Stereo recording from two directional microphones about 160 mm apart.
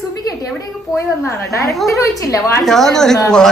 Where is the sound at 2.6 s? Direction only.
5° left (ahead or behind).